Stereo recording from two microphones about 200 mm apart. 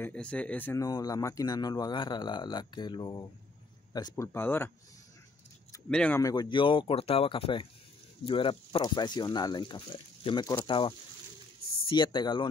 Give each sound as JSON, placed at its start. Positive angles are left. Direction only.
{"t": 0.0, "sound": "speech", "side_deg": 5}
{"t": 4.2, "sound": "speech", "side_deg": 10}
{"t": 5.9, "sound": "speech", "side_deg": 5}